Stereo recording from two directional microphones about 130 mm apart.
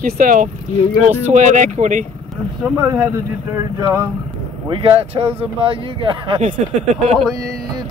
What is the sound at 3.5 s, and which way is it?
Speech, 25° right (ahead or behind).